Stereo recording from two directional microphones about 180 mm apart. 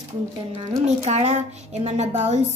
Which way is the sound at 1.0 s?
35° right (ahead or behind).